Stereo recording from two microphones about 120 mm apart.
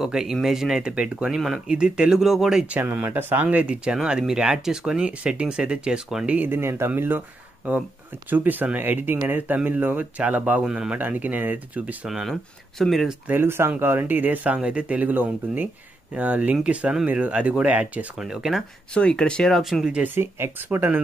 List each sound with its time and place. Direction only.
0.0 s speech: 5° right (ahead or behind)
2.8 s speech: 15° right (ahead or behind)
12.1 s speech: centre (ahead or behind)
13.3 s speech: 20° right (ahead or behind); by 18.6 s 5° right (ahead or behind)
18.9 s speech: 10° left (ahead or behind)
20.0 s speech: 20° right (ahead or behind)